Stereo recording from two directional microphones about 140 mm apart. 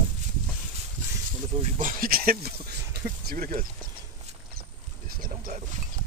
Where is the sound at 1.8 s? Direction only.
80° right.